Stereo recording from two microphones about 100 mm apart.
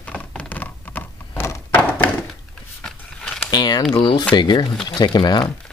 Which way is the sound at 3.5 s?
45° left (ahead or behind).